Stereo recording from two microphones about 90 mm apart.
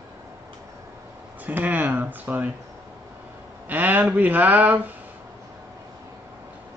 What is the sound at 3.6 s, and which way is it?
Speech, 20° right (ahead or behind).